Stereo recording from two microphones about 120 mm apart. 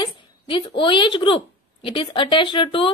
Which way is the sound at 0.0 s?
40° left (ahead or behind).